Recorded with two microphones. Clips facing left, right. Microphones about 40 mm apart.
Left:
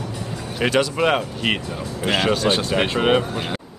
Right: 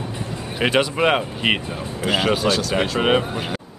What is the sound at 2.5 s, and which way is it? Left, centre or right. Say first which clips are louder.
Speech: even; left.